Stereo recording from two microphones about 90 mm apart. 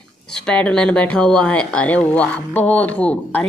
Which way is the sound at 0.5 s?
10° left (ahead or behind).